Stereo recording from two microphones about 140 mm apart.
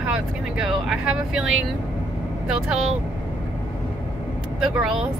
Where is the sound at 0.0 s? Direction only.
5° right (ahead or behind).